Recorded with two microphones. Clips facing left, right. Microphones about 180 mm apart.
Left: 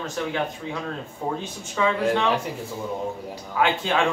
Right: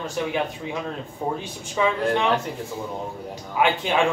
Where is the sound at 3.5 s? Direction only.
15° right (ahead or behind).